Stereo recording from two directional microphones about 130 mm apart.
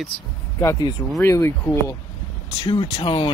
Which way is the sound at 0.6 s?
20° left (ahead or behind).